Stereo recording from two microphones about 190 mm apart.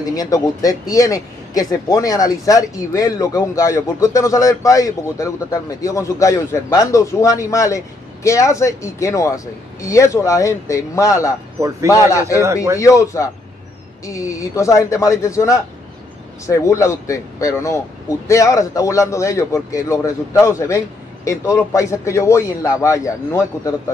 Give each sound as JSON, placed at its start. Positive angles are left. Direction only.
{"t": 0.0, "sound": "speech", "side_deg": 20}